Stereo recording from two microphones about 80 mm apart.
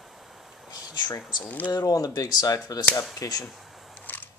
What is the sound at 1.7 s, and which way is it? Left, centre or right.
Speech, left.